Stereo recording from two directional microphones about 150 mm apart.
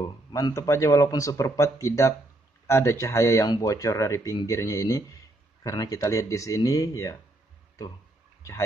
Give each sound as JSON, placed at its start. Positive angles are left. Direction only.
{"t": 0.0, "sound": "speech", "side_deg": 25}